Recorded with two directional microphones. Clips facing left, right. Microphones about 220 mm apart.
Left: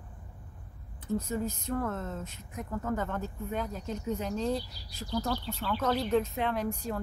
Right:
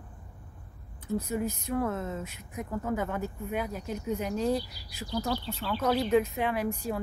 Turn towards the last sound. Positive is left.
turn(degrees=-10)  # may be behind; listen again after turning